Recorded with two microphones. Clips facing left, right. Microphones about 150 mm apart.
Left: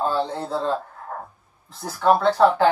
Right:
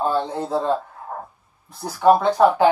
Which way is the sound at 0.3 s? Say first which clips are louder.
Right 3 dB; 15° right (ahead or behind).